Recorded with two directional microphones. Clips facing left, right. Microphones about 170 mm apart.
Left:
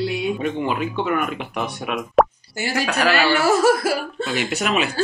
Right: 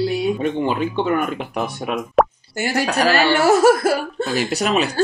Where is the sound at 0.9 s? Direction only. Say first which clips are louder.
Right 3 dB; 30° right (ahead or behind).